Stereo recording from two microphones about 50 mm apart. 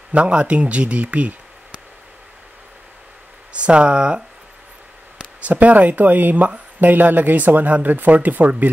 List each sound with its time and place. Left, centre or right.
0.1 s speech: right
3.5 s speech: right
5.4 s speech: right